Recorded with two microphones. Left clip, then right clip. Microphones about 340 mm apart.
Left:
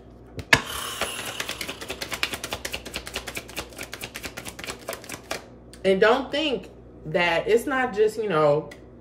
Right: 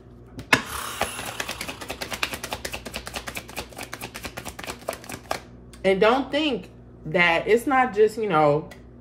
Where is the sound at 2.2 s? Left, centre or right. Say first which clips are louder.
Even; centre.